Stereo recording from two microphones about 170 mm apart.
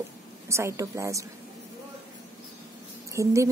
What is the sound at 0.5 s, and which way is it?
Speech, 15° right (ahead or behind).